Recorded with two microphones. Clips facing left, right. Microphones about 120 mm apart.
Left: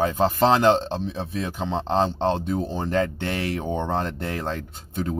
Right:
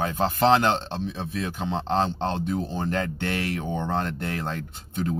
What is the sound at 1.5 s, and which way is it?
A man's voice, 30° left (ahead or behind).